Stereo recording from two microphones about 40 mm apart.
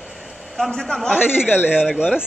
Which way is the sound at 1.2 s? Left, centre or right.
Left.